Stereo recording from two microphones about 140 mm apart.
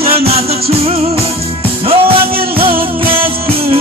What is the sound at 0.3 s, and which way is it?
Music, 45° right (ahead or behind).